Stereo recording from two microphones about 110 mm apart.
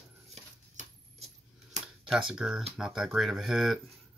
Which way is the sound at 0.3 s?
85° right.